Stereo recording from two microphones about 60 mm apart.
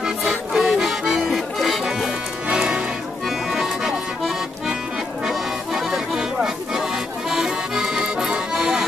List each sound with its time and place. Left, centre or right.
0.0 s accordion: centre
2.4 s music: centre
3.3 s accordion: centre
5.2 s music: centre
8.5 s accordion: centre